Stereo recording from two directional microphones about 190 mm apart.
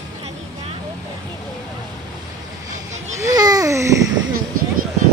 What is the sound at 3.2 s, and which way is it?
Babbling, 20° right (ahead or behind).